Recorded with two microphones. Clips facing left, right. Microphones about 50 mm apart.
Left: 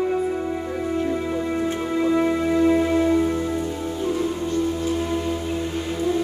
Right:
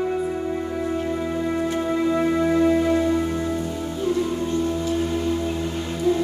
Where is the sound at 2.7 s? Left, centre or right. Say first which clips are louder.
Left 1 dB; centre.